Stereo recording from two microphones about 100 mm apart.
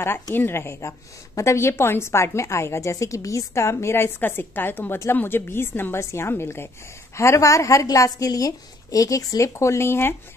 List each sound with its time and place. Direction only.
0.3 s a woman's voice: 20° left (ahead or behind)